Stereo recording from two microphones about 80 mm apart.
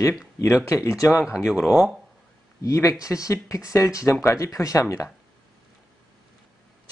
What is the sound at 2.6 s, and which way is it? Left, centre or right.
Speech, left.